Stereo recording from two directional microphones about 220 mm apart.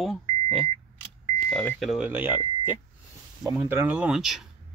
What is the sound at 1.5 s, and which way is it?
Speech, 5° left (ahead or behind).